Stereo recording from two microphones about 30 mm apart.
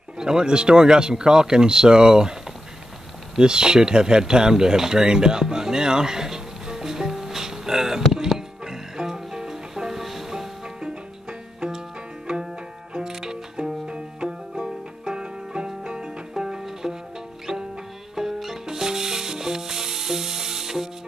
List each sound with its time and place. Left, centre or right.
0.2 s speech: right
3.3 s a sound: right
8.1 s music: centre
10.8 s music: right
12.9 s music: right
16.8 s music: centre
17.5 s music: centre